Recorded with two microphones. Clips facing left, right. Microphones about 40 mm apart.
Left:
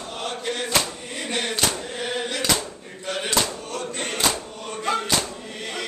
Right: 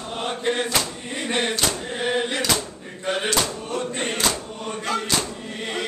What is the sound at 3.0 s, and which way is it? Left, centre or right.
Slam, right.